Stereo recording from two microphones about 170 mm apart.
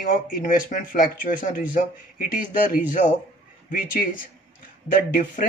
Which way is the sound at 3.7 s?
50° left (ahead or behind).